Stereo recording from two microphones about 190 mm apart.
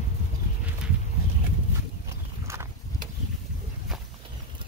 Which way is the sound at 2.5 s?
15° right (ahead or behind).